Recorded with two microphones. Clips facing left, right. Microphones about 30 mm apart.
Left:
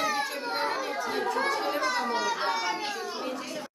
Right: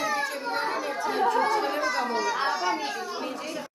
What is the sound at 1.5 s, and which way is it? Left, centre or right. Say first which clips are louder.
Chatter: right 3 dB; centre.